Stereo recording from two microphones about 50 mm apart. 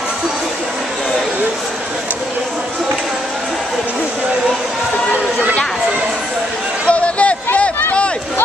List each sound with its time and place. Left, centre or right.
6.9 s chatter: left